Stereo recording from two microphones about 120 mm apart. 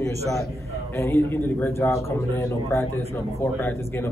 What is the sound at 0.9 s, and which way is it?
A man's voice, 20° left (ahead or behind).